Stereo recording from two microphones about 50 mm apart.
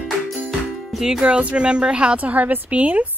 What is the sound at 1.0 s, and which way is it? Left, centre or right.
A woman's voice, centre.